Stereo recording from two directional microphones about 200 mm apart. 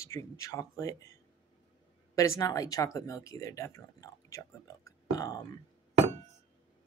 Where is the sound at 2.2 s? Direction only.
15° left (ahead or behind).